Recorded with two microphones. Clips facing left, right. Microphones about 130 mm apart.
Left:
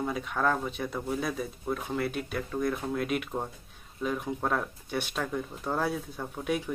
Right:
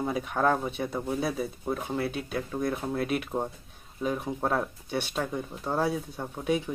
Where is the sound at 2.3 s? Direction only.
25° right (ahead or behind).